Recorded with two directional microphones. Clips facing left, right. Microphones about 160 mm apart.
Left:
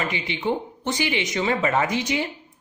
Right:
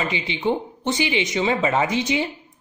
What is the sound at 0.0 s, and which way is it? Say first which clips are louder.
Speech: right 2 dB; 20° right (ahead or behind).